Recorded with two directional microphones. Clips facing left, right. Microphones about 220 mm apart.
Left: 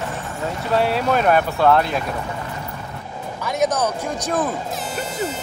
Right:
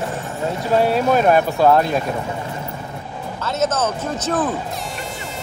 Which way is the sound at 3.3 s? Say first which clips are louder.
Even; 15° left (ahead or behind).